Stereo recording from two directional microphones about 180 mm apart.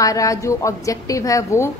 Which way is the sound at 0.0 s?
20° left (ahead or behind).